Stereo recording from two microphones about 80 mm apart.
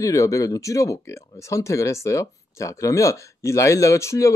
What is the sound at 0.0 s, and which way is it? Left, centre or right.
Speech, left.